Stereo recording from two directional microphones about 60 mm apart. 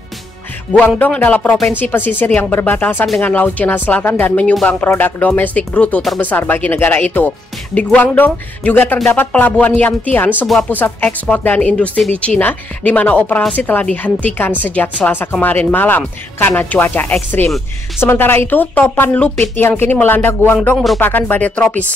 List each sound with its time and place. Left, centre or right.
0.8 s speech: left
10.4 s speech: centre
10.7 s speech: left
20.7 s speech: centre
21.0 s speech: left